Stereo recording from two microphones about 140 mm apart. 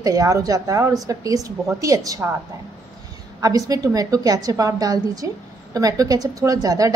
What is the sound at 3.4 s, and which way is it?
A woman's voice, 25° right (ahead or behind).